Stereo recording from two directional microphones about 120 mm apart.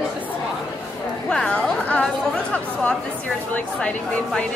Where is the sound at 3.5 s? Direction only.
10° left (ahead or behind).